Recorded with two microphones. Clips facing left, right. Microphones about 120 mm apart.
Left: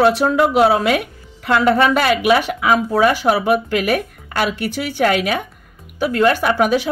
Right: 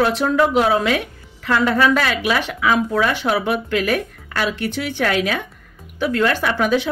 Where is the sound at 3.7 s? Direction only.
10° left (ahead or behind).